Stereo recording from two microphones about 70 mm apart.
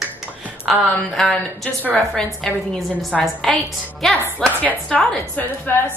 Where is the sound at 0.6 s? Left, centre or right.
Centre.